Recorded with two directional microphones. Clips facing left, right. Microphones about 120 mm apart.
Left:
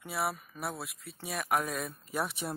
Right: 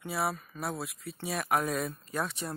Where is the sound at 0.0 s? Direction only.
5° left (ahead or behind).